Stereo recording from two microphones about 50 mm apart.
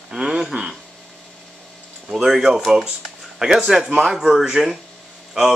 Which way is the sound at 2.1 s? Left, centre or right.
Centre.